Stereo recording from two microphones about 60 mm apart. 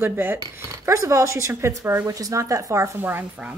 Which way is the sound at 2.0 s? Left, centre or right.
Right.